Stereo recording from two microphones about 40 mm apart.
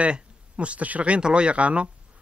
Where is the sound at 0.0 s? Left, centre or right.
Right.